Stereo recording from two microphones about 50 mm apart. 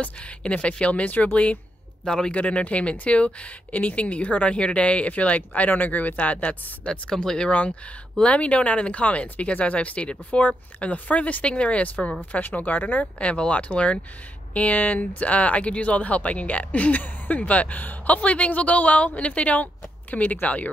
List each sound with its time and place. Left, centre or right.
0.0 s speech: left
2.0 s speech: centre
2.3 s speech: left
6.9 s speech: centre; by 13.0 s left
13.0 s speech: left